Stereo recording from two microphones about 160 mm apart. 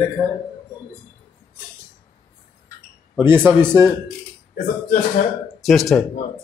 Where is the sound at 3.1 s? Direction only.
15° right (ahead or behind).